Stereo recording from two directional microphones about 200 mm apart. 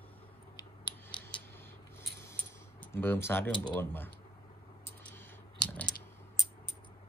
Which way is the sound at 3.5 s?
20° left (ahead or behind).